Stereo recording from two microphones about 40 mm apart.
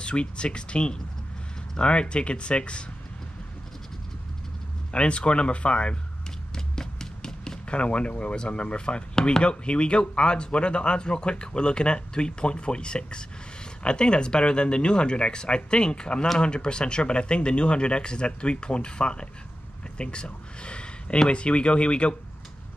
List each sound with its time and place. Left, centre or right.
0.0 s speech: left
4.9 s speech: left
6.5 s a sound: centre
9.4 s speech: left